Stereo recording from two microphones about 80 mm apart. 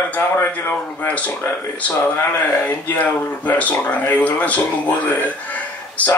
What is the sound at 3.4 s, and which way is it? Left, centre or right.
Speech, left.